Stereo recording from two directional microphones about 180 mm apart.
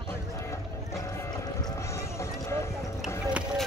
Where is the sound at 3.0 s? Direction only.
Centre (ahead or behind).